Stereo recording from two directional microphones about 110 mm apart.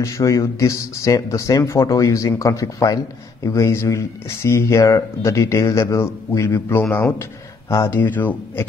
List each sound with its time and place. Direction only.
0.0 s speech: 30° left (ahead or behind)
8.0 s speech: 15° left (ahead or behind)